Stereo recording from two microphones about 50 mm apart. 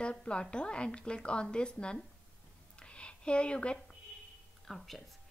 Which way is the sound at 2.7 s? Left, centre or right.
Left.